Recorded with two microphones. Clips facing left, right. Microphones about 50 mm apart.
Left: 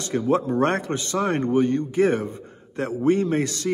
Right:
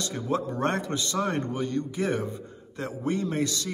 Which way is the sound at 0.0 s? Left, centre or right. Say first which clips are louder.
Left 7 dB; left.